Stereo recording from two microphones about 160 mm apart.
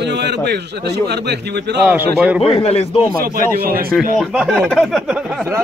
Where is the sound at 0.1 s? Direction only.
90° right.